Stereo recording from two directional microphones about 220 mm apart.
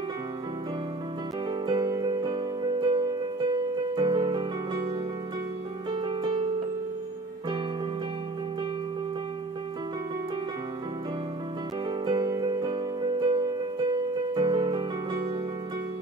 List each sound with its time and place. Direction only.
1.7 s music: 20° right (ahead or behind)
5.9 s music: 20° right (ahead or behind)
12.0 s music: 20° right (ahead or behind)